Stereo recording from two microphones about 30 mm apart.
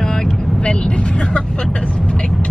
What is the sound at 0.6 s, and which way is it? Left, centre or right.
Speech, left.